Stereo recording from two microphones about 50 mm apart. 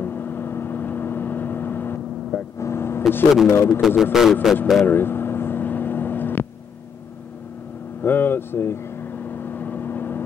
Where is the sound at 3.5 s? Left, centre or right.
Left.